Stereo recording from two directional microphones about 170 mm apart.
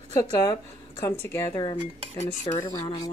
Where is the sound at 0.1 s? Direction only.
25° left (ahead or behind).